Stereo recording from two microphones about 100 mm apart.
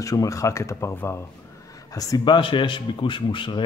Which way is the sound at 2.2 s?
55° left (ahead or behind).